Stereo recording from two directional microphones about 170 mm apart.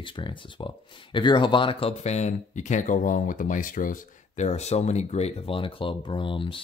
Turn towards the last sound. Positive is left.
turn(degrees=30)  # may be behind; listen again after turning